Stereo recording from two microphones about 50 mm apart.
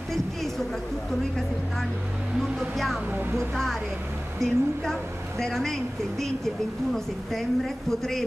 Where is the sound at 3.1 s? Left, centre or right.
Right.